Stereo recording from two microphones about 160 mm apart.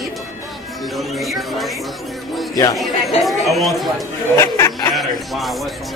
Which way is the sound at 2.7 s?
Centre (ahead or behind).